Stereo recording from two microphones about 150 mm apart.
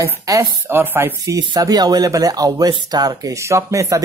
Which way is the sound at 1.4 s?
25° right (ahead or behind).